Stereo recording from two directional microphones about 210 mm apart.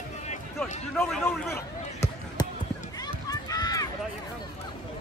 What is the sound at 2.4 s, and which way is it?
Basketball bounce, 20° left (ahead or behind).